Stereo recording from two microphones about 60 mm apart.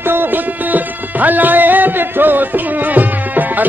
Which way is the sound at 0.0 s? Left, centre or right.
Right.